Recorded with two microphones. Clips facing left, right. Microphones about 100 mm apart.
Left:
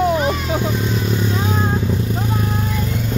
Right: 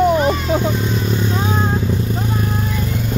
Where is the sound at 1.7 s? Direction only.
5° left (ahead or behind).